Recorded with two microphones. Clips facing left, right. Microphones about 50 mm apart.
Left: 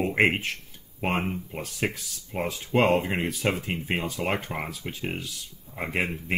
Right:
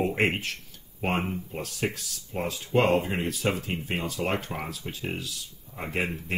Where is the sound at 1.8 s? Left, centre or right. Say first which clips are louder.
Left 2 dB; left.